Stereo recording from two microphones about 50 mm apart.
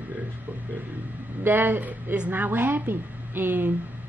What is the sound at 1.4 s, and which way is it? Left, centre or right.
A woman's voice, right.